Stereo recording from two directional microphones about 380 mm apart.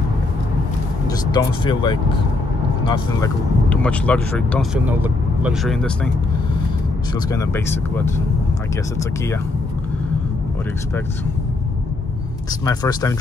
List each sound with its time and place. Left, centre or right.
1.0 s speech: centre
7.2 s speech: centre
12.6 s speech: centre